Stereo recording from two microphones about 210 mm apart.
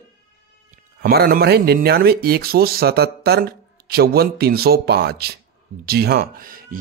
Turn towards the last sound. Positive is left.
turn(degrees=-45)  # may be behind; listen again after turning